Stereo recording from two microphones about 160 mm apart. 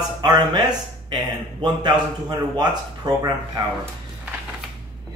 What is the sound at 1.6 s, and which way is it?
Speech, 25° right (ahead or behind).